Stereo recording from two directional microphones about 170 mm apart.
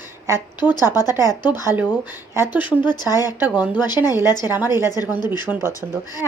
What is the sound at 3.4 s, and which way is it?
Speech, 10° right (ahead or behind).